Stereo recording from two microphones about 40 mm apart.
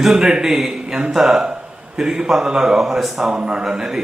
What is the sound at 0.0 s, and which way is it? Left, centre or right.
A man's voice, centre.